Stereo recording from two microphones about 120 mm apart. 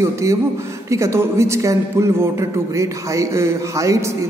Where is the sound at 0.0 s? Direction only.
25° right (ahead or behind).